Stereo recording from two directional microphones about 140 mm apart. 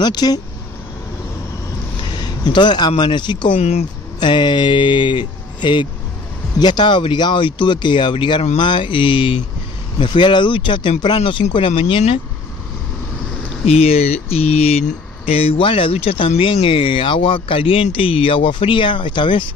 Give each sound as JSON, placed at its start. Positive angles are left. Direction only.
{"t": 0.0, "sound": "speech", "side_deg": 30}
{"t": 2.1, "sound": "a sound", "side_deg": 30}
{"t": 3.0, "sound": "speech", "side_deg": 35}
{"t": 3.5, "sound": "speech", "side_deg": 50}
{"t": 4.2, "sound": "speech", "side_deg": 35}
{"t": 11.7, "sound": "speech", "side_deg": 50}
{"t": 13.7, "sound": "speech", "side_deg": 45}